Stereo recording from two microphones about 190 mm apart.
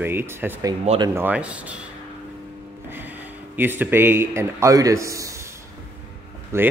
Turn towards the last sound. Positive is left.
turn(degrees=-15)  # may be behind; listen again after turning